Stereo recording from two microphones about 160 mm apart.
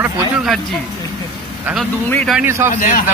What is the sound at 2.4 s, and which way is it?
Speech, 15° right (ahead or behind).